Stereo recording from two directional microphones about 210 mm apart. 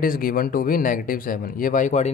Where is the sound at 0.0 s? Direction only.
45° left (ahead or behind).